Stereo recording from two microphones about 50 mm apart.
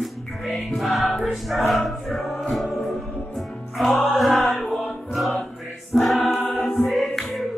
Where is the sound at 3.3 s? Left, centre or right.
Centre.